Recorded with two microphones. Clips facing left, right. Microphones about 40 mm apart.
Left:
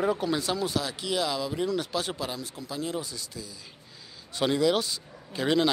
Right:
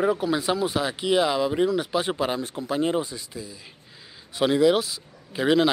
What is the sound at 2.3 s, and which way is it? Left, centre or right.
Speech, right.